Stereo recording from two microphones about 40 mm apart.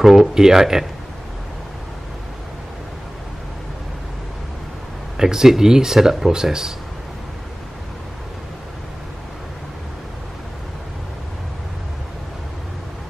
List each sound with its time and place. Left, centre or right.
0.0 s speech: centre
5.1 s speech: centre